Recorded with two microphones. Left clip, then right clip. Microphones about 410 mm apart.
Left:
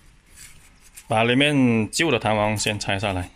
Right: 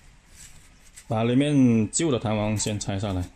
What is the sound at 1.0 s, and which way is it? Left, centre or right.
Speech, left.